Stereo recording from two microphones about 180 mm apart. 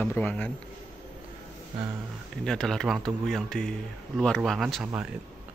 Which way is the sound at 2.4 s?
5° left (ahead or behind).